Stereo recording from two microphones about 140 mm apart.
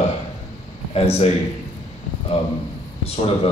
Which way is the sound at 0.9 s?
45° left (ahead or behind).